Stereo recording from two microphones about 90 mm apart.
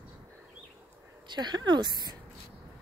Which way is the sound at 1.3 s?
55° right (ahead or behind).